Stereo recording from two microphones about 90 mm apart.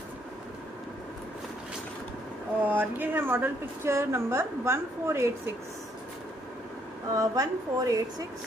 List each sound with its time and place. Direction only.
2.6 s a woman's voice: 20° right (ahead or behind)
7.2 s a woman's voice: 40° right (ahead or behind)